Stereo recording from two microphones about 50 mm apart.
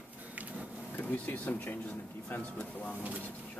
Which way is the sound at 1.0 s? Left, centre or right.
Left.